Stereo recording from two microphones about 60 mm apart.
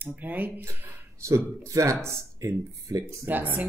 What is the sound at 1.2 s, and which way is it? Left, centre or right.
Speech, right.